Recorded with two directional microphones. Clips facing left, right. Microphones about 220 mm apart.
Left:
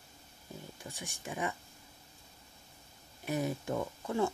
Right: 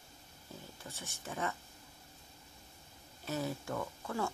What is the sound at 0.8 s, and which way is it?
Speech, 15° left (ahead or behind).